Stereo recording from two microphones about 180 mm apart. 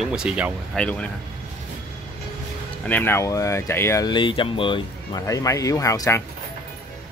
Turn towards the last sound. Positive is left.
turn(degrees=15)  # may be behind; listen again after turning